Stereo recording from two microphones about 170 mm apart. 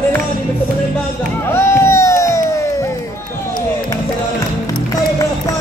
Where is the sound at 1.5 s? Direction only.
15° left (ahead or behind).